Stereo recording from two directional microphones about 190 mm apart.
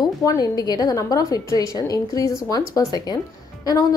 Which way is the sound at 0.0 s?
20° left (ahead or behind).